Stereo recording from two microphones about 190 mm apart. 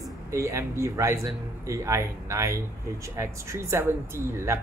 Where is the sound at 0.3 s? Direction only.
15° right (ahead or behind).